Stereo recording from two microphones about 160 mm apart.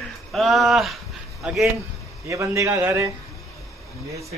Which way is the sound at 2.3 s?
20° right (ahead or behind).